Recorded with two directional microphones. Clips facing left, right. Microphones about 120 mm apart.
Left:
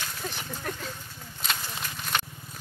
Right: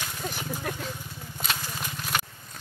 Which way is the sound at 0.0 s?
10° right (ahead or behind).